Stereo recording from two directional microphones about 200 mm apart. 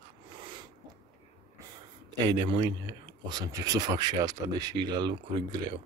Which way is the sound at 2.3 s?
25° right (ahead or behind).